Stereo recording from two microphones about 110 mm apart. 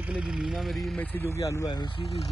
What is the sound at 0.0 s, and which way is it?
Speech, 10° right (ahead or behind).